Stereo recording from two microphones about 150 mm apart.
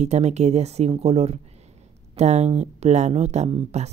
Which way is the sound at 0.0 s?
45° right (ahead or behind).